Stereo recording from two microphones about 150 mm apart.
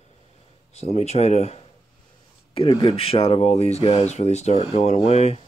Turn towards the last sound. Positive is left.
turn(degrees=45)  # may be behind; listen again after turning